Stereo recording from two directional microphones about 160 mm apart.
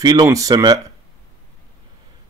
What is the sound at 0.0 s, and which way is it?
Speech, 25° right (ahead or behind).